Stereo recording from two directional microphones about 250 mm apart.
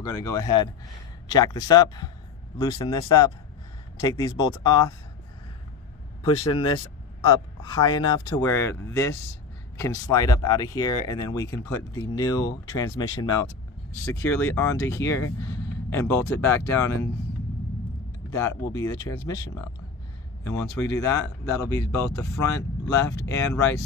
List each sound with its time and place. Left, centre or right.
0.0 s speech: centre
7.9 s speech: centre
18.3 s speech: centre